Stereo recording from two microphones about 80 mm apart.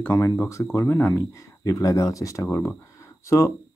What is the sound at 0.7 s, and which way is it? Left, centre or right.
Speech, left.